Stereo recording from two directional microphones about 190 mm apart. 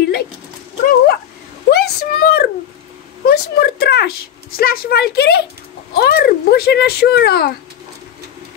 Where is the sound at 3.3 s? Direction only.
55° left (ahead or behind).